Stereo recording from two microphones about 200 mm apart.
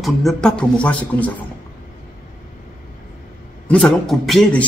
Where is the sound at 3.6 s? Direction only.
5° left (ahead or behind).